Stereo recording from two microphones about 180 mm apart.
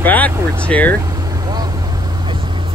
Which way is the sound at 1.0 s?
20° right (ahead or behind).